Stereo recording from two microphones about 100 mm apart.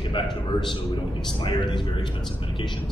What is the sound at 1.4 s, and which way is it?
Speech, 50° left (ahead or behind).